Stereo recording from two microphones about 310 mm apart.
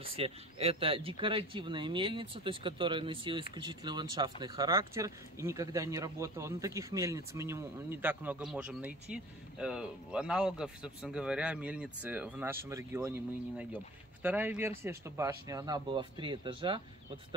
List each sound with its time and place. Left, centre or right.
0.1 s speech: centre